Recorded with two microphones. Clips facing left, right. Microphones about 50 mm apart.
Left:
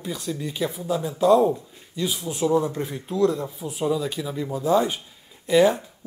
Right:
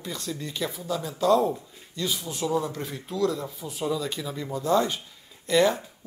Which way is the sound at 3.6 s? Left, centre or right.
Centre.